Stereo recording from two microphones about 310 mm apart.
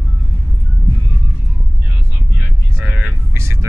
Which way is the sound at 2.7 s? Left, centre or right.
Centre.